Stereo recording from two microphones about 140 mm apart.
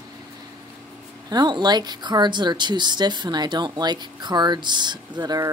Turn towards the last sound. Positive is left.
turn(degrees=-30)  # may be behind; listen again after turning